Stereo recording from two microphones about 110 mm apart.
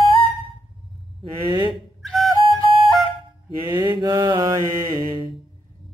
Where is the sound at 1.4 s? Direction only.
45° right (ahead or behind).